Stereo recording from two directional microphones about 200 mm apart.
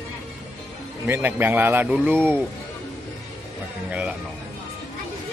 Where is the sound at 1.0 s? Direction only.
10° right (ahead or behind).